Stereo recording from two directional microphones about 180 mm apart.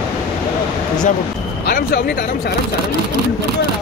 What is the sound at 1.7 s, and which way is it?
Speech, 55° left (ahead or behind).